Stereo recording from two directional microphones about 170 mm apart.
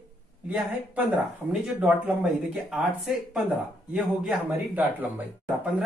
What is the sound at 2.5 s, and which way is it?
Speech, 5° right (ahead or behind).